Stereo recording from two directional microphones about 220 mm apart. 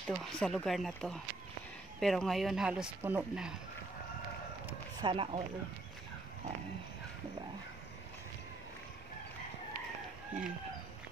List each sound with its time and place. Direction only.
0.0 s speech: centre (ahead or behind)
5.0 s speech: 25° right (ahead or behind)